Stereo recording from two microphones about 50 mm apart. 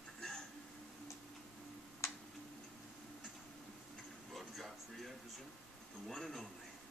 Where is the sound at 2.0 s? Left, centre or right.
Left.